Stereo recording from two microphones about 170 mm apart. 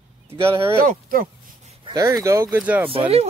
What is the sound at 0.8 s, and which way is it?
Speech, 55° right (ahead or behind).